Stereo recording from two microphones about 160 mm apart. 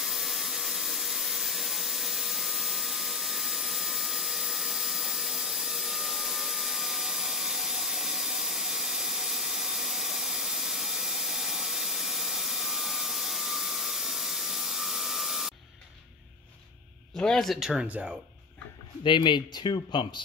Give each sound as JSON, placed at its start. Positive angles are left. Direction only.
{"t": 0.0, "sound": "vacuum cleaner", "side_deg": 0}
{"t": 17.2, "sound": "speech", "side_deg": 0}
{"t": 19.0, "sound": "speech", "side_deg": 30}